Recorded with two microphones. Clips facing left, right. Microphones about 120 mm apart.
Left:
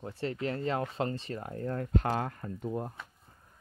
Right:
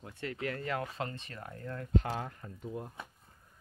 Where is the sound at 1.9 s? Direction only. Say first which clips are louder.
Left 1 dB; 60° left (ahead or behind).